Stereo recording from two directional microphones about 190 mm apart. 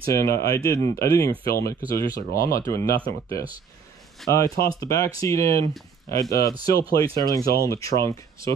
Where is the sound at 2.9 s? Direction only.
25° right (ahead or behind).